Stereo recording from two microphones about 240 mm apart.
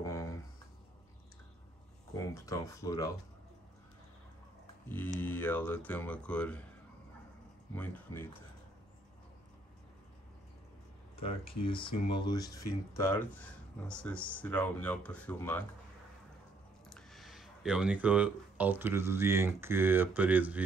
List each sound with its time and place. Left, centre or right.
0.0 s a sound: centre
2.1 s speech: centre
4.8 s speech: centre
7.7 s speech: centre
11.1 s speech: left; by 15.6 s centre
16.9 s speech: centre